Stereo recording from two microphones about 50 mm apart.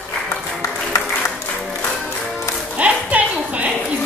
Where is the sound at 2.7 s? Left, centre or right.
Right.